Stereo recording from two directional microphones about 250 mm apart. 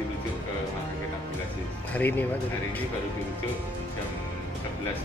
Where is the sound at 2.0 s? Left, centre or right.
Centre.